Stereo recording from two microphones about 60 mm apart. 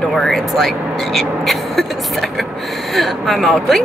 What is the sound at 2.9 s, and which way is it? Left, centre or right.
Speech, centre.